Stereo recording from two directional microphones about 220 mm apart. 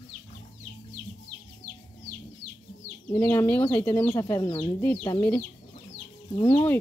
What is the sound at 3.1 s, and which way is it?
Speech, 10° left (ahead or behind).